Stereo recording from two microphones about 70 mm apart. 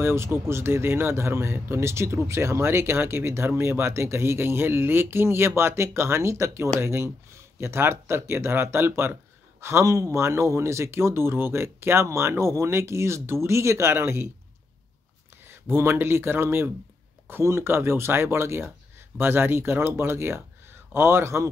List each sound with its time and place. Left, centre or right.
0.0 s speech: right
15.4 s speech: right